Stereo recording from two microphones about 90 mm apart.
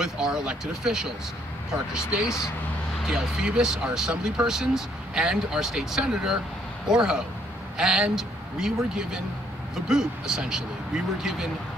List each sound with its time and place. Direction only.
0.0 s speech: 5° right (ahead or behind)